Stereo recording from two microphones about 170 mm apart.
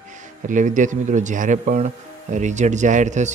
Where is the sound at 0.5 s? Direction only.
50° right (ahead or behind).